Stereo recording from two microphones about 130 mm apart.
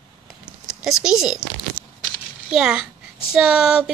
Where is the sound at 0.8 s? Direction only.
5° right (ahead or behind).